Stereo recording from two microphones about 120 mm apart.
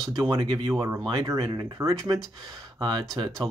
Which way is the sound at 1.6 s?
25° right (ahead or behind).